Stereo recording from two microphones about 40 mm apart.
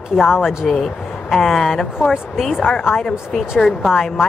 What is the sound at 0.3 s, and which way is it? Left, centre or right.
Speech, centre.